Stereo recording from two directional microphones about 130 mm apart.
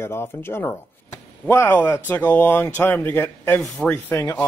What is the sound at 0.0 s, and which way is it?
Speech, 20° left (ahead or behind).